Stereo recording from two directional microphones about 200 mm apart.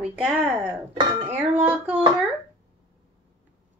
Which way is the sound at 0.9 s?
30° right (ahead or behind).